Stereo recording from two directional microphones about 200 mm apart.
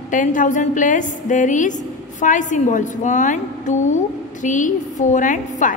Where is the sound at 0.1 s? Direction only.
40° left (ahead or behind).